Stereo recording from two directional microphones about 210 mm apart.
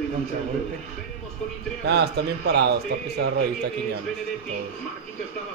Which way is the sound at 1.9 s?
50° right (ahead or behind).